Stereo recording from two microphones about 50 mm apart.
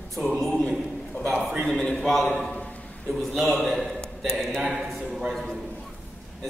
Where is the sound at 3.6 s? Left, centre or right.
Centre.